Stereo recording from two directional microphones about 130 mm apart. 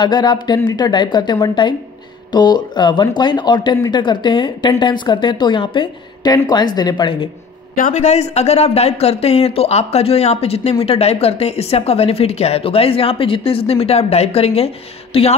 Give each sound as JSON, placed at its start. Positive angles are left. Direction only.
{"t": 0.0, "sound": "speech", "side_deg": 35}
{"t": 7.7, "sound": "a man's voice", "side_deg": 75}